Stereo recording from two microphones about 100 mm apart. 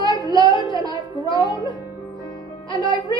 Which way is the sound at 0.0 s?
50° left (ahead or behind).